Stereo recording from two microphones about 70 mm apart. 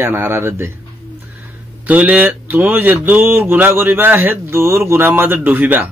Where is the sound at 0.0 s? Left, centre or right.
Right.